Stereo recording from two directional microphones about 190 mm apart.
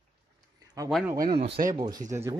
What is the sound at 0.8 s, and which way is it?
Speech, 20° right (ahead or behind).